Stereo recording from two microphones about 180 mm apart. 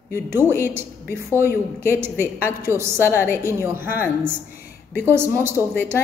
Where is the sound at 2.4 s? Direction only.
15° right (ahead or behind).